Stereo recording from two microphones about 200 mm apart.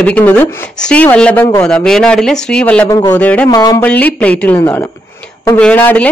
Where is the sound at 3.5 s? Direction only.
20° left (ahead or behind).